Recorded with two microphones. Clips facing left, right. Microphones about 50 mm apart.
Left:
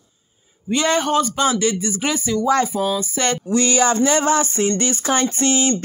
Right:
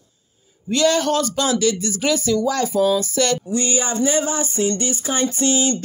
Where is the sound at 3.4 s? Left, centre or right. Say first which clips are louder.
Left 5 dB; left.